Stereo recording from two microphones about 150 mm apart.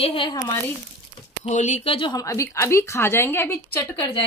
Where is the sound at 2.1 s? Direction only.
20° left (ahead or behind).